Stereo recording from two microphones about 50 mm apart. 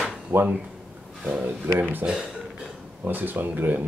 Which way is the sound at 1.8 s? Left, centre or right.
Right.